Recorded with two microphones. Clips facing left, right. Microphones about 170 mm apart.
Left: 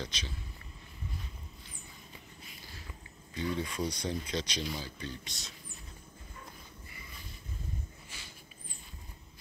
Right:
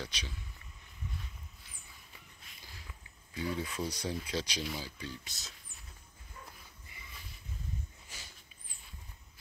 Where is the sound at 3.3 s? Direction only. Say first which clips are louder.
Left 2 dB; 10° right (ahead or behind).